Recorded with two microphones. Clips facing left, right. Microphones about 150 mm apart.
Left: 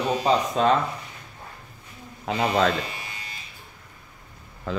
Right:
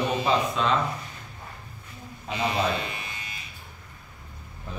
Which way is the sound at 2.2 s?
80° left.